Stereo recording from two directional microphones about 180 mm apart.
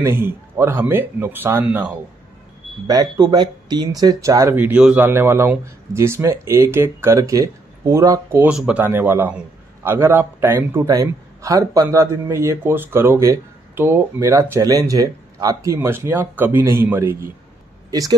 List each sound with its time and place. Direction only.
0.0 s a man's voice: 15° right (ahead or behind)
2.9 s a man's voice: 20° right (ahead or behind)